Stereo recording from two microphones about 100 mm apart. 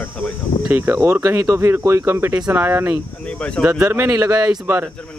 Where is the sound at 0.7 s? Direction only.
20° right (ahead or behind).